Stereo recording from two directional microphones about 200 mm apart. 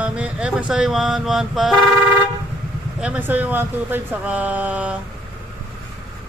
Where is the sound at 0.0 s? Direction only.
5° right (ahead or behind).